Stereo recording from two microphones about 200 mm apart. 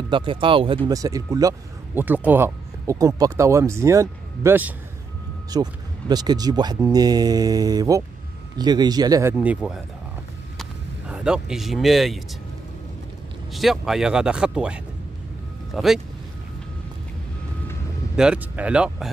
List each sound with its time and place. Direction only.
0.1 s speech: 25° right (ahead or behind)
9.4 s speech: 5° right (ahead or behind)
13.5 s speech: centre (ahead or behind)
18.1 s speech: 5° right (ahead or behind)